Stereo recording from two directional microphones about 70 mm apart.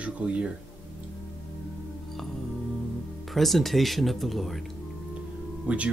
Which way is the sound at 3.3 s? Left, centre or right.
Centre.